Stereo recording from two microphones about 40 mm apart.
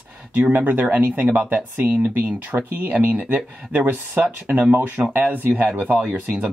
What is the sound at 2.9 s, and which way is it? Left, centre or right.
Speech, right.